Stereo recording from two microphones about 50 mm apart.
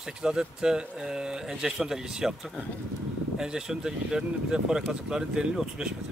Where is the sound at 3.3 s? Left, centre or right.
Centre.